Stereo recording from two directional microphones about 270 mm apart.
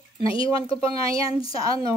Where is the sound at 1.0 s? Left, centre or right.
Centre.